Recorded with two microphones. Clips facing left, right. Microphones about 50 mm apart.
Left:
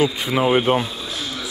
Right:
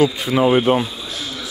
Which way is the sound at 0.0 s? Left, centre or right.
Centre.